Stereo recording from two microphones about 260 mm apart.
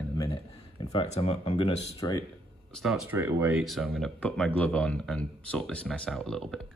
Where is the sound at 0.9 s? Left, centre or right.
Left.